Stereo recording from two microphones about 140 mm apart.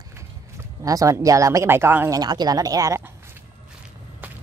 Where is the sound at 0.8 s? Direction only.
25° right (ahead or behind).